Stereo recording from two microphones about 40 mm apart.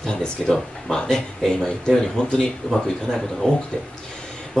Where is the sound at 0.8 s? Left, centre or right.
Centre.